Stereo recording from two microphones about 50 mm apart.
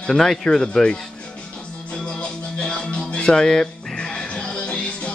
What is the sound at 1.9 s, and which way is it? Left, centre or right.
Music, centre.